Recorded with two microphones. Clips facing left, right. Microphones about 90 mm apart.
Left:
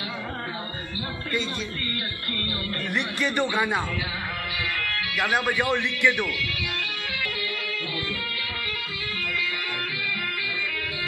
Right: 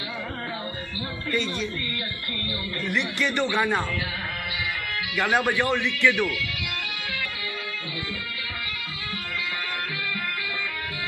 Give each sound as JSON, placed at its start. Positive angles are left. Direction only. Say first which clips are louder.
{"t": 2.9, "sound": "speech", "louder": "right 1 dB", "side_deg": 20}
{"t": 5.1, "sound": "speech", "louder": "right 2 dB", "side_deg": 0}
{"t": 5.7, "sound": "speech", "louder": "right 1 dB", "side_deg": 15}